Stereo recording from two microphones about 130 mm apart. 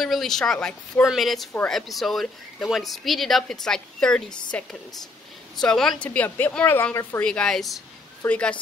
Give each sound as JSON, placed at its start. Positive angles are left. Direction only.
{"t": 0.0, "sound": "speech", "side_deg": 0}
{"t": 6.0, "sound": "a woman's voice", "side_deg": 15}
{"t": 7.2, "sound": "a woman's voice", "side_deg": 5}